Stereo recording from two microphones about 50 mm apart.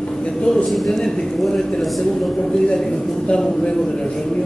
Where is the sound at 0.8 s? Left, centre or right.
Centre.